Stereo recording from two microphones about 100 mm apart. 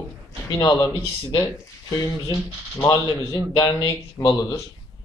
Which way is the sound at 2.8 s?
35° left (ahead or behind).